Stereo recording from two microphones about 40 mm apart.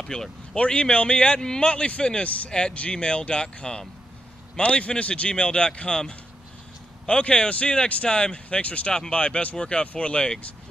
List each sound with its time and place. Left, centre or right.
0.1 s a man's voice: left